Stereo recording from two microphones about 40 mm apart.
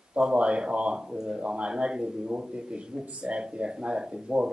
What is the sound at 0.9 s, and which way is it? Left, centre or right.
A man's voice, centre.